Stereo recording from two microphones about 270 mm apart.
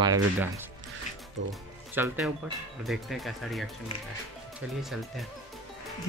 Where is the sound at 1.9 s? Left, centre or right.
Centre.